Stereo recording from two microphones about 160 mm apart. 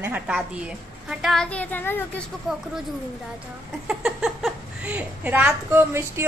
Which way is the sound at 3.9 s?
Centre (ahead or behind).